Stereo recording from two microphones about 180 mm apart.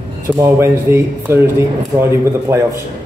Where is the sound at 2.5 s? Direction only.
15° right (ahead or behind).